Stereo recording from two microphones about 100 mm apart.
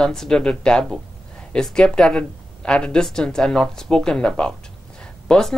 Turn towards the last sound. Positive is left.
turn(degrees=5)  # may be behind; listen again after turning